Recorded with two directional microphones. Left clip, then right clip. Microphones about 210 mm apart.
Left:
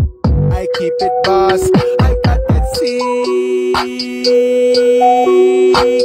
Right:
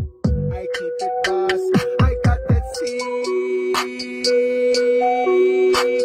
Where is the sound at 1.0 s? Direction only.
40° left (ahead or behind).